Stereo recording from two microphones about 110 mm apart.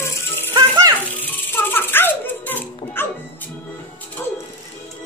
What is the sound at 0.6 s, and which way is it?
Rattle, 35° right (ahead or behind).